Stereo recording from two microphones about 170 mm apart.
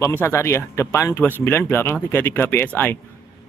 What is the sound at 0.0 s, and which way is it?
Speech, 15° left (ahead or behind).